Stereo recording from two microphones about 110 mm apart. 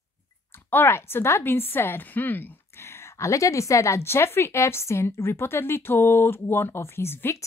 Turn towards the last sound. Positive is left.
turn(degrees=20)  # may be behind; listen again after turning